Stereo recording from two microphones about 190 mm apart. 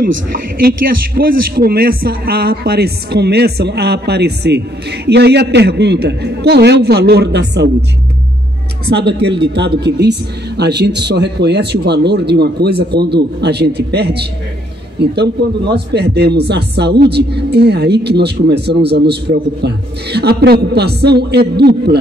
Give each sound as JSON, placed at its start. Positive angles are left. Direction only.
{"t": 0.6, "sound": "a man's voice", "side_deg": -50}
{"t": 8.8, "sound": "a man's voice", "side_deg": -60}